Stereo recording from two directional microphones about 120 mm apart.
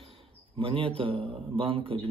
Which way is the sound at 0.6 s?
45° right (ahead or behind).